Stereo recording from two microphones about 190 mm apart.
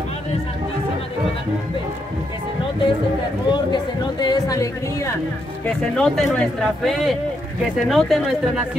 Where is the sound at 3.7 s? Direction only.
20° left (ahead or behind).